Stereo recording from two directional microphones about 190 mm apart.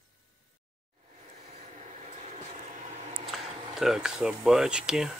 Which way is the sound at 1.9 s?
40° right (ahead or behind).